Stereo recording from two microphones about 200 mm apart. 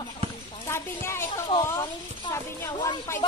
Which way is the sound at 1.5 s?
20° left (ahead or behind).